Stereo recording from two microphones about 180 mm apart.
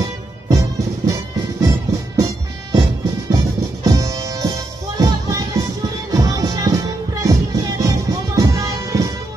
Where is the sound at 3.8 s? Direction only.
20° right (ahead or behind).